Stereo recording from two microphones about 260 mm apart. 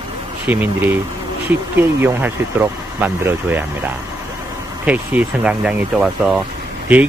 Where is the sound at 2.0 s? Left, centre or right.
Centre.